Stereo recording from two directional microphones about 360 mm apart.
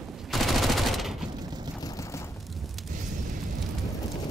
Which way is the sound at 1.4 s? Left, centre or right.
Centre.